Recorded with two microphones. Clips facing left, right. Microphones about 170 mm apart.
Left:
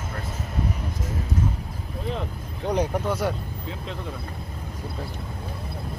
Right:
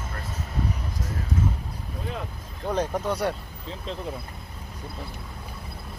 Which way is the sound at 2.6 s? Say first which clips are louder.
Left 2 dB; 10° left (ahead or behind).